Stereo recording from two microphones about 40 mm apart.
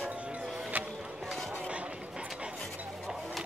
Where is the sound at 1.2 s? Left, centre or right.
Centre.